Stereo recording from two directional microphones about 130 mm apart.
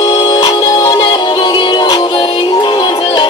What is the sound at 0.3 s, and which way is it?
Music, 35° left (ahead or behind).